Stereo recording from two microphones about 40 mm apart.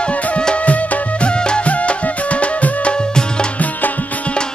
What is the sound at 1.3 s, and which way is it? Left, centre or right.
Music, left.